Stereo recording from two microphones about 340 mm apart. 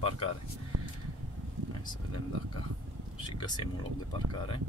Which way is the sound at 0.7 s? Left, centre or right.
Right.